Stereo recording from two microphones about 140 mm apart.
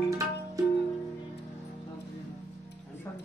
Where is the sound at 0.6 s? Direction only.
25° right (ahead or behind).